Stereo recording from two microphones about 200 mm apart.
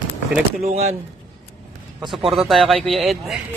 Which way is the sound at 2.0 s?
25° right (ahead or behind).